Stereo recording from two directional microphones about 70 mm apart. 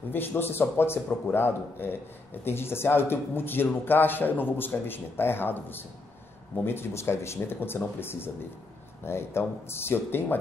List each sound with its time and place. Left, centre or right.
0.1 s speech: left